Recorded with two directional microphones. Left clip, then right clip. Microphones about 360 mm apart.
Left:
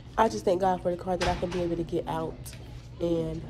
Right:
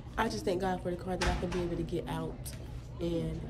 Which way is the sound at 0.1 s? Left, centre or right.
Centre.